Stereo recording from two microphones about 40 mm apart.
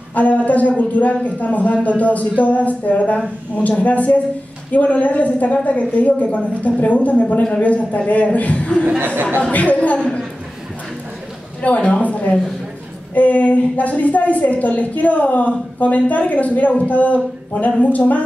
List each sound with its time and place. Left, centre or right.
0.1 s a woman's voice: left
9.0 s speech: right
9.4 s a woman's voice: left
11.6 s a woman's voice: left